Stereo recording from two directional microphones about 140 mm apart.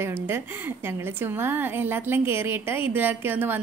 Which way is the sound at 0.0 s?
15° right (ahead or behind).